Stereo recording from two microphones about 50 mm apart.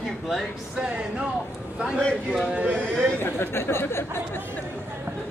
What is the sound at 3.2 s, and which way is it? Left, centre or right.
Speech, left.